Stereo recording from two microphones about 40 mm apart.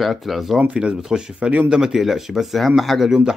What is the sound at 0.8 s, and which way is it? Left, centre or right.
Speech, right.